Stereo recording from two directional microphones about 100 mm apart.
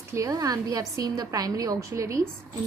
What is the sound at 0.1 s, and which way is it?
A woman's voice, 35° right (ahead or behind).